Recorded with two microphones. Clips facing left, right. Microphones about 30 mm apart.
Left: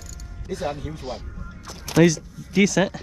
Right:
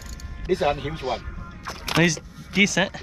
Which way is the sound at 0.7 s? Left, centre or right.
Right.